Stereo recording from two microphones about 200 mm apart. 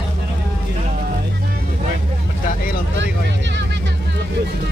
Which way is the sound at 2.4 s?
45° left (ahead or behind).